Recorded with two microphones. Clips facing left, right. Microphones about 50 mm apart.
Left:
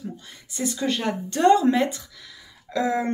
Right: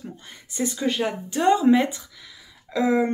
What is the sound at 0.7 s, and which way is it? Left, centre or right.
Speech, centre.